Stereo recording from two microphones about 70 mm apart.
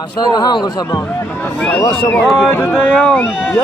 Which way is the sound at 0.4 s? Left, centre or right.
Left.